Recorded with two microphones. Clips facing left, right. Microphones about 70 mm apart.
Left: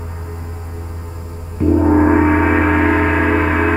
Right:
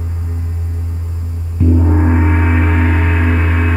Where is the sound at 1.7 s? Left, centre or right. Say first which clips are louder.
Left 4 dB; left.